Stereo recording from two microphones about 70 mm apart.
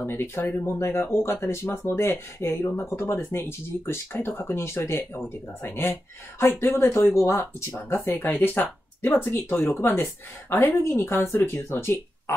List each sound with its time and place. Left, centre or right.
0.0 s speech: left
8.2 s speech: left